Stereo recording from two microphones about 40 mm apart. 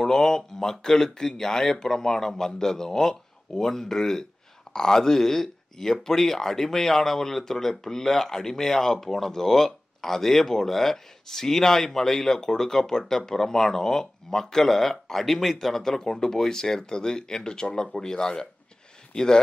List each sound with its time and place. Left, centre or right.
0.0 s speech: centre